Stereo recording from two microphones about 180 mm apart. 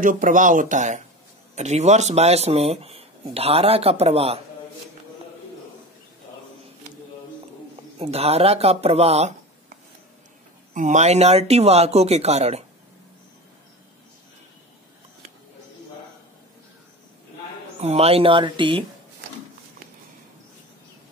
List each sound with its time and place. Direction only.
0.0 s speech: 45° right (ahead or behind)
8.0 s speech: 35° right (ahead or behind)
10.7 s speech: 45° right (ahead or behind)
17.7 s speech: 35° right (ahead or behind)